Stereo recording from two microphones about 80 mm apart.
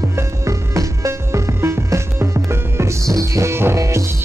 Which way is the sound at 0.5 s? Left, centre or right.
Right.